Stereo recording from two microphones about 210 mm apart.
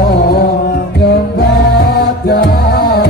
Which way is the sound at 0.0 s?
45° left (ahead or behind).